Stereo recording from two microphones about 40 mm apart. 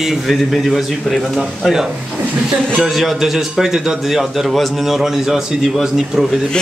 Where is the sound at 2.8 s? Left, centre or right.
Centre.